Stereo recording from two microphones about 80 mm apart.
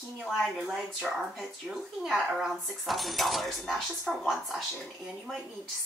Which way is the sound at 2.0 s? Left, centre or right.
Centre.